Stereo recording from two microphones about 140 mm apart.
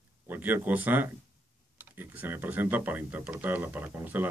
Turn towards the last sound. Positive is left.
turn(degrees=-15)  # may be behind; listen again after turning